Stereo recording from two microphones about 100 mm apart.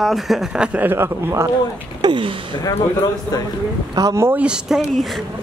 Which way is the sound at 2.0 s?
55° right (ahead or behind).